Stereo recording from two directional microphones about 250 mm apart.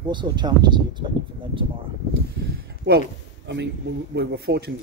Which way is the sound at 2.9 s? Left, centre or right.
Right.